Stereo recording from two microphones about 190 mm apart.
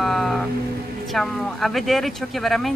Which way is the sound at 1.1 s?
Centre (ahead or behind).